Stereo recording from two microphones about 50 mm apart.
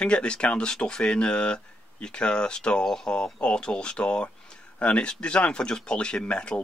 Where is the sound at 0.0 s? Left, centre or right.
Centre.